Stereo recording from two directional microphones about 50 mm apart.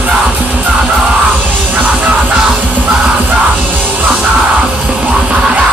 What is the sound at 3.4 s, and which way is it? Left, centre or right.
Music, right.